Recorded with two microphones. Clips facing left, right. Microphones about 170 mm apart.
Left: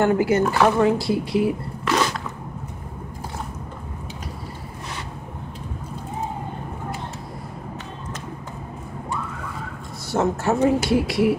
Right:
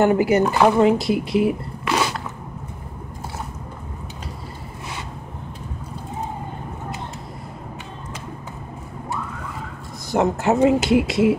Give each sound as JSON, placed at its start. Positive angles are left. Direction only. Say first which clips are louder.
{"t": 0.0, "sound": "speech", "louder": "right 2 dB", "side_deg": -20}
{"t": 1.9, "sound": "biting", "louder": "even", "side_deg": -10}
{"t": 10.1, "sound": "speech", "louder": "right 2 dB", "side_deg": -20}